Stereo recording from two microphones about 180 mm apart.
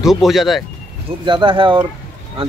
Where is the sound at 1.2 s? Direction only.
25° right (ahead or behind).